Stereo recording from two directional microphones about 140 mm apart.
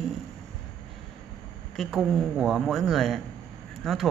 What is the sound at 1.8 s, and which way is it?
A woman's voice, centre (ahead or behind).